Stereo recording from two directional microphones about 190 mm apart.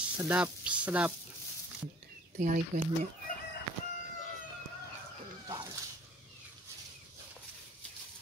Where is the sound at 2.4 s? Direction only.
45° right (ahead or behind).